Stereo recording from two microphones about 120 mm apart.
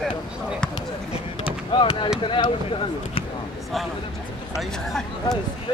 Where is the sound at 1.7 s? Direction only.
40° left (ahead or behind).